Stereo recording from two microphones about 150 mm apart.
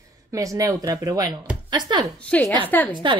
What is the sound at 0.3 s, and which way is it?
A woman's voice, 20° right (ahead or behind).